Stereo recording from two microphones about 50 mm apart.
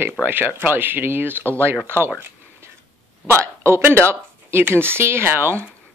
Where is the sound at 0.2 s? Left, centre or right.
Right.